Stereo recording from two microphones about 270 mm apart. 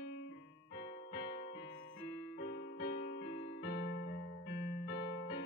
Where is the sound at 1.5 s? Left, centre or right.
Left.